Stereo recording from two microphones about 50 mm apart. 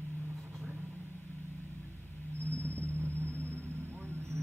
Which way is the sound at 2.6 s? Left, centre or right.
Right.